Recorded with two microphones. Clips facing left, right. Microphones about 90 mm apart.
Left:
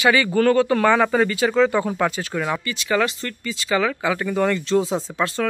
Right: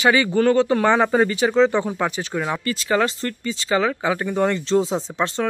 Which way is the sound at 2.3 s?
15° right (ahead or behind).